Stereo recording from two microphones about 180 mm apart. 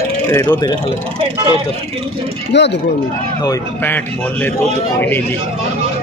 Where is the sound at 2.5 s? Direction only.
75° left (ahead or behind).